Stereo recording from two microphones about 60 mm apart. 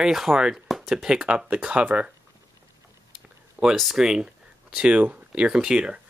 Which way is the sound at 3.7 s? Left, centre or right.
Centre.